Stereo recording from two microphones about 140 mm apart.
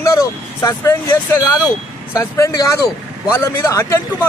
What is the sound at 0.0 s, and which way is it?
Speech, 20° left (ahead or behind).